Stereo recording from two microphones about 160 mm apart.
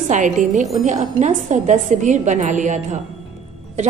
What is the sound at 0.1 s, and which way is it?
A woman's voice, 45° right (ahead or behind).